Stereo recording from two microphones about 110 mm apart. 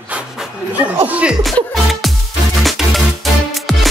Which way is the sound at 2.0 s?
Centre (ahead or behind).